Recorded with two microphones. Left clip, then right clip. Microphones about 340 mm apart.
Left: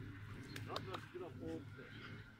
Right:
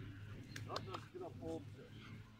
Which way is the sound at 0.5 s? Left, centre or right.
Centre.